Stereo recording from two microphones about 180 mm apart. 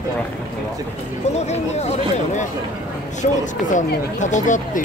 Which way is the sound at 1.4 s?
40° left (ahead or behind).